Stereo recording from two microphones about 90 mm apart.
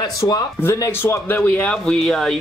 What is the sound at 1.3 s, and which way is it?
Speech, 15° left (ahead or behind).